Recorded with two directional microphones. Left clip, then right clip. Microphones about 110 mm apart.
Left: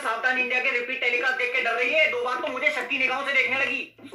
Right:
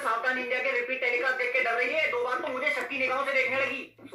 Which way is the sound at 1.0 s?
25° left (ahead or behind).